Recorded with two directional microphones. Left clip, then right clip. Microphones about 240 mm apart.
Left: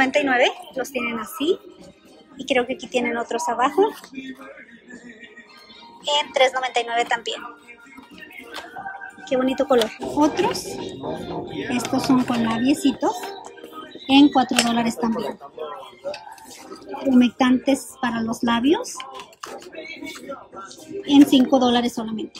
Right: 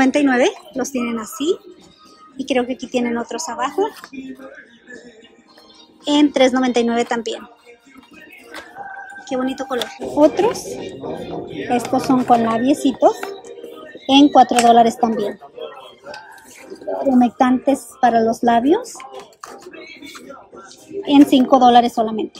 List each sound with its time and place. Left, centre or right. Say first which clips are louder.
0.0 s a woman's voice: right 3 dB; right
6.0 s a woman's voice: right 4 dB; right
9.2 s speech: left 2 dB; centre
13.1 s speech: right 3 dB; centre
14.4 s speech: right 10 dB; centre
17.0 s a woman's voice: right 3 dB; centre